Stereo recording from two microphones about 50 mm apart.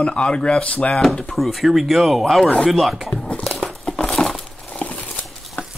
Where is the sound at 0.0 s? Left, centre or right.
Centre.